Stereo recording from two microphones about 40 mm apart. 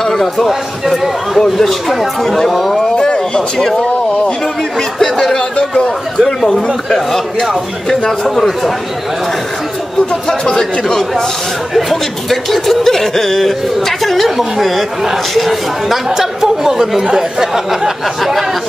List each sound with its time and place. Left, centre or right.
0.0 s a sound: centre
1.6 s speech: centre
3.0 s a sound: centre
3.5 s speech: centre
6.4 s speech: centre
10.2 s speech: centre
11.7 s speech: centre